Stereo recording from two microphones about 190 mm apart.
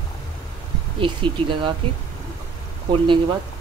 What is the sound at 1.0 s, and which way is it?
Speech, 25° right (ahead or behind).